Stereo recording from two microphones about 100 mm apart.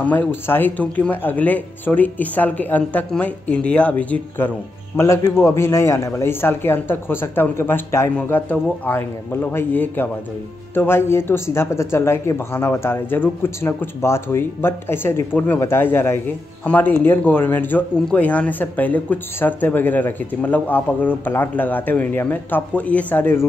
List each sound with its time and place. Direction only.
0.0 s speech: 15° left (ahead or behind)
4.9 s speech: 30° left (ahead or behind)